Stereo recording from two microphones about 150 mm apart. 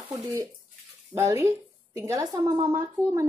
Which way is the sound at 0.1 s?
20° right (ahead or behind).